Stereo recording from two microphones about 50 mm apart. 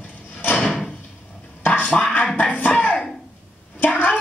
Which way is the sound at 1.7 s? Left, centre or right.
Left.